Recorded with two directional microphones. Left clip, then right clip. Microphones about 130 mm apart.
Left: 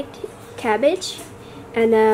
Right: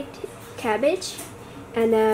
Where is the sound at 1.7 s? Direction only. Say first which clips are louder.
Left 4 dB; 20° left (ahead or behind).